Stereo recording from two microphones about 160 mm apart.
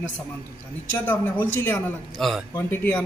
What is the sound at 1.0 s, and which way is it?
Speech, 15° left (ahead or behind).